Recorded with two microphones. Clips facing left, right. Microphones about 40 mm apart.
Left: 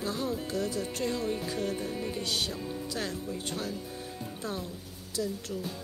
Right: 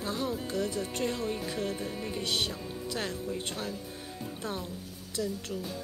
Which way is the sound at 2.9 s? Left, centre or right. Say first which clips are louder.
Right 4 dB; right.